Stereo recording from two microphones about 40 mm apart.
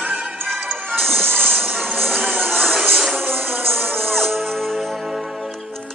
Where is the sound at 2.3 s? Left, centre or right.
Right.